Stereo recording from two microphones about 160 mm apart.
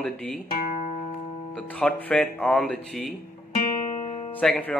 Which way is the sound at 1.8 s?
10° left (ahead or behind).